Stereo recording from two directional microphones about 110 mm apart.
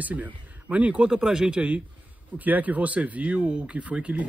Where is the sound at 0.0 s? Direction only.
15° right (ahead or behind).